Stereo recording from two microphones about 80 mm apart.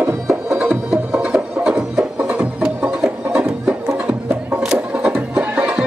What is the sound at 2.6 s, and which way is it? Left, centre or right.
Music, centre.